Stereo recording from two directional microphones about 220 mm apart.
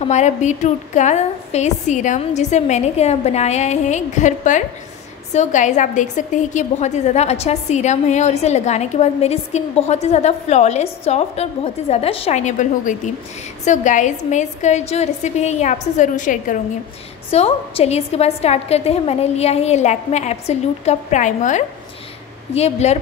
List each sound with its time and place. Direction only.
0.0 s a woman's voice: 30° left (ahead or behind)